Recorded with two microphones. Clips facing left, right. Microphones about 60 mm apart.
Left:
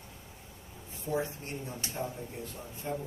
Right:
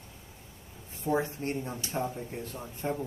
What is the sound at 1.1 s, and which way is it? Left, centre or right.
Speech, right.